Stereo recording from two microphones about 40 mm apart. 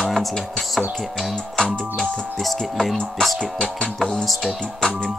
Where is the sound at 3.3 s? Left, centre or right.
Centre.